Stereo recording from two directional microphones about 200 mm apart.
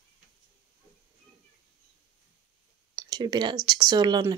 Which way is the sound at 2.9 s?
20° right (ahead or behind).